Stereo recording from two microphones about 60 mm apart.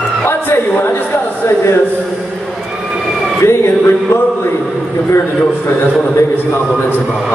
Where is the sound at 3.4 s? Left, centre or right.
Left.